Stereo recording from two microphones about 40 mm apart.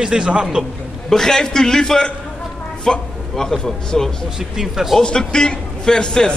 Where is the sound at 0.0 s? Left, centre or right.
Centre.